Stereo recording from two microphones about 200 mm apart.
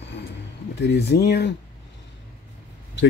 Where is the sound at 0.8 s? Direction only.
55° left (ahead or behind).